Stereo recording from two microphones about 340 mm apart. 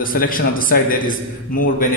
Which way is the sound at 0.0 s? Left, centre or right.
Left.